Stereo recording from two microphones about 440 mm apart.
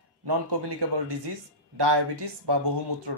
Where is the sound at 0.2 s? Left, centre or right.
Right.